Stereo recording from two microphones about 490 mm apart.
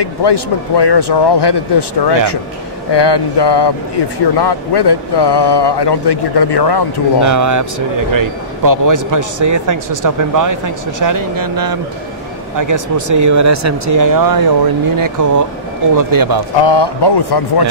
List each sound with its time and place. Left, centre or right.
0.0 s speech: left
2.9 s a sound: left
4.4 s speech: left
7.2 s a man's voice: right
16.6 s speech: left